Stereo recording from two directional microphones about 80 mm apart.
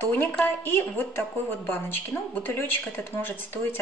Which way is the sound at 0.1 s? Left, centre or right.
Centre.